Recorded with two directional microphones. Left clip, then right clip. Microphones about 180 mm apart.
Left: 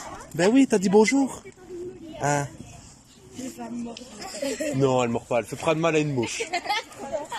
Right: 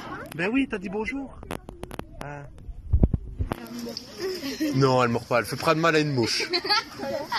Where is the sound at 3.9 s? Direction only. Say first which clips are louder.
Right 5 dB; 80° left.